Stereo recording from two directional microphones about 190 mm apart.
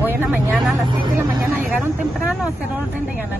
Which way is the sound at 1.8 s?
10° right (ahead or behind).